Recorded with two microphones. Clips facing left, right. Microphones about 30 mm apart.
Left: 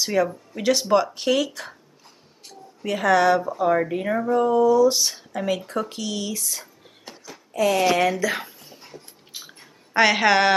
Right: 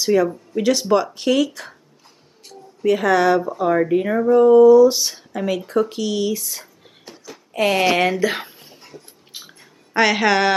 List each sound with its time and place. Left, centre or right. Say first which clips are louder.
0.0 s speech: right 5 dB; centre
7.5 s speech: right 2 dB; right
7.8 s speech: right 3 dB; right
9.3 s chewing: right 1 dB; centre
9.9 s speech: right 1 dB; centre